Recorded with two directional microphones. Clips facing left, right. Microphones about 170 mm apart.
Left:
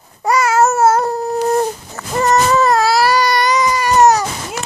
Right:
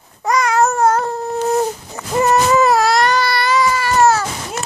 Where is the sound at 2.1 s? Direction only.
10° right (ahead or behind); by 4.3 s 15° left (ahead or behind).